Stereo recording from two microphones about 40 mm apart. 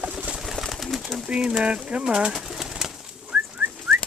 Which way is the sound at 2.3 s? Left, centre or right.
Centre.